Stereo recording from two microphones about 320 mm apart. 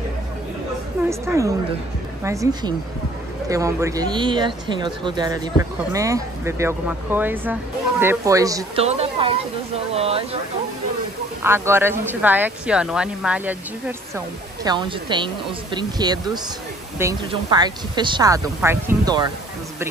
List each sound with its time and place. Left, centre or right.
1.2 s speech: centre
11.4 s speech: centre